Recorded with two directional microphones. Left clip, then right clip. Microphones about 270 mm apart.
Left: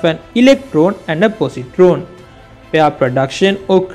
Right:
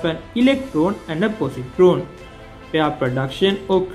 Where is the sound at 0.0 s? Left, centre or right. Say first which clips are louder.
Left 8 dB; left.